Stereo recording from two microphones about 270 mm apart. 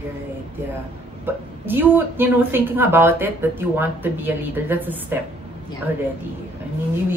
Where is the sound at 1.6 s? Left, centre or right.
Centre.